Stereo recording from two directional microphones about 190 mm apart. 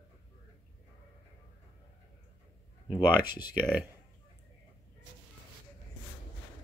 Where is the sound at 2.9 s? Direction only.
10° right (ahead or behind).